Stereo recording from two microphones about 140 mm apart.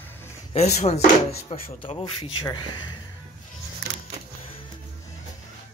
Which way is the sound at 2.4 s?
30° left (ahead or behind).